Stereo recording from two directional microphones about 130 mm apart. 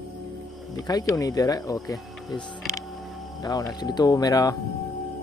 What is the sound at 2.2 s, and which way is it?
Speech, centre (ahead or behind).